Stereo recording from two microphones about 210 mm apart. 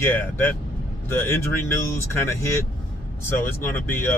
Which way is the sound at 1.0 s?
10° left (ahead or behind).